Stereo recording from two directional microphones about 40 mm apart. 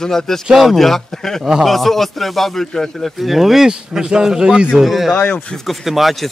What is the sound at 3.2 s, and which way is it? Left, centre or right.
Speech, centre.